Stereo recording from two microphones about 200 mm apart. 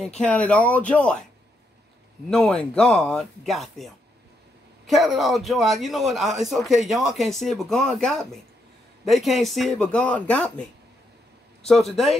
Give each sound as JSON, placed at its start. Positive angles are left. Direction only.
{"t": 0.0, "sound": "speech", "side_deg": 5}
{"t": 2.2, "sound": "speech", "side_deg": 5}
{"t": 11.6, "sound": "speech", "side_deg": 0}